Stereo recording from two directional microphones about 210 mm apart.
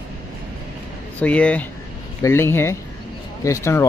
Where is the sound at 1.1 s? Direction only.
5° left (ahead or behind).